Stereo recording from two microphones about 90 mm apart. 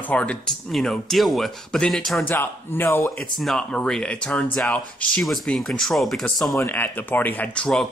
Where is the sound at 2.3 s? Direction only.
25° left (ahead or behind).